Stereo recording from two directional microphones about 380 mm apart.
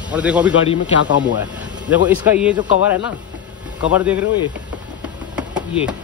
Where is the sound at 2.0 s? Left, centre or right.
Centre.